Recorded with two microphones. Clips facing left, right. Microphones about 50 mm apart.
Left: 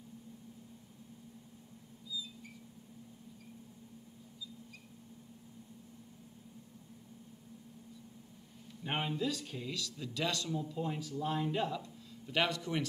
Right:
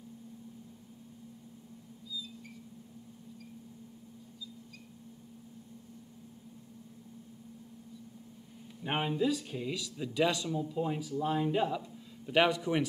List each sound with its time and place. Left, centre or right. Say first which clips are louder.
8.8 s speech: right 5 dB; centre